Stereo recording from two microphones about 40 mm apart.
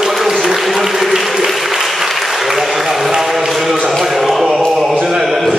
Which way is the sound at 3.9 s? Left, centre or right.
Centre.